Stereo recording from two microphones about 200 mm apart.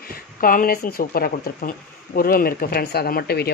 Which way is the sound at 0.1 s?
45° left (ahead or behind).